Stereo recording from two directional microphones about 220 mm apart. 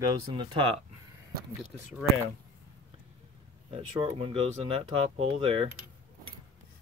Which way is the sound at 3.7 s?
25° right (ahead or behind).